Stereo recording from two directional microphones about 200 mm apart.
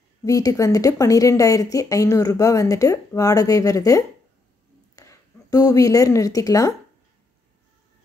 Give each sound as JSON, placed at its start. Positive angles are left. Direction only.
{"t": 0.2, "sound": "a woman's voice", "side_deg": 15}